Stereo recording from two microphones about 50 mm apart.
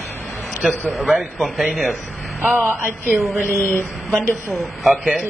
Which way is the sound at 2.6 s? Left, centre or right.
Right.